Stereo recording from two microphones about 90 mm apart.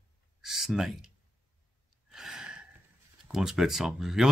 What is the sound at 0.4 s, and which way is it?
Clicking, 5° right (ahead or behind).